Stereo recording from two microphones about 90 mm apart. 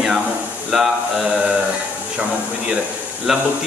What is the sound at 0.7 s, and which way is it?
Mantra, 5° right (ahead or behind).